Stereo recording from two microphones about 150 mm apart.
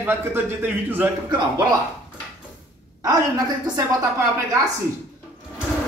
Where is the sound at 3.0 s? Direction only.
25° right (ahead or behind).